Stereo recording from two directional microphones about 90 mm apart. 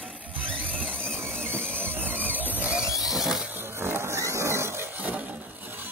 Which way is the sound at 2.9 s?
Centre (ahead or behind).